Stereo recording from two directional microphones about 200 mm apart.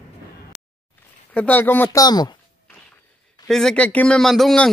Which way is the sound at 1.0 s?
10° left (ahead or behind).